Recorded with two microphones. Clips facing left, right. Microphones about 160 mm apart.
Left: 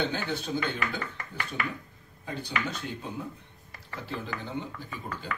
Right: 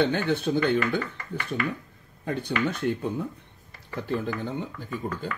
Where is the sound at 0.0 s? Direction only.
60° right (ahead or behind).